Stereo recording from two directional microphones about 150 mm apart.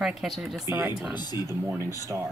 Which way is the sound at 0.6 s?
20° right (ahead or behind).